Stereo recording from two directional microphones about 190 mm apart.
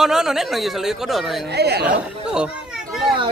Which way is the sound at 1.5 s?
60° right (ahead or behind).